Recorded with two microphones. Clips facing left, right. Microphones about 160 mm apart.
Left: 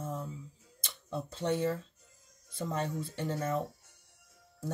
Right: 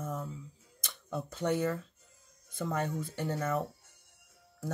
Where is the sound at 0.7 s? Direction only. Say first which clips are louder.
Even; 30° left (ahead or behind).